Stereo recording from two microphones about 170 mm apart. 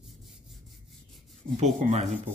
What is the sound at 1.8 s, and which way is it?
Speech, 40° right (ahead or behind).